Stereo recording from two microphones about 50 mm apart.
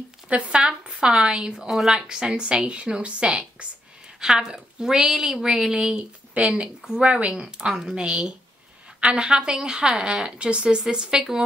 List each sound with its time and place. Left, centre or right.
0.3 s a woman's voice: right
1.7 s a woman's voice: centre
2.0 s a woman's voice: centre
4.2 s a woman's voice: centre